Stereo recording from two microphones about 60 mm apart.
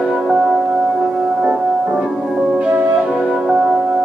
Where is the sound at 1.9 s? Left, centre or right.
Centre.